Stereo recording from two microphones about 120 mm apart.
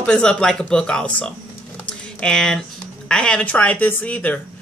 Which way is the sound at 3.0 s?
5° left (ahead or behind).